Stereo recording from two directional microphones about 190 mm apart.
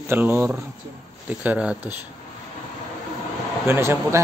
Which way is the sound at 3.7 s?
15° right (ahead or behind).